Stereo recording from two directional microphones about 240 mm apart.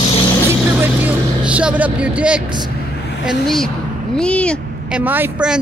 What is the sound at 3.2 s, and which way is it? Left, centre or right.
Speech, centre.